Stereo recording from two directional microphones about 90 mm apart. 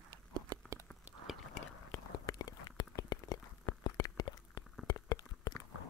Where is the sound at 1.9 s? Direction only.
40° left (ahead or behind).